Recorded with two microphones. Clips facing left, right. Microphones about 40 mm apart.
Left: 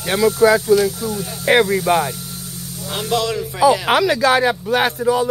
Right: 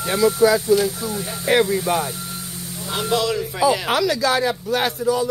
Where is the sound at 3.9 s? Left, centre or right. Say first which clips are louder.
Left 4 dB; left.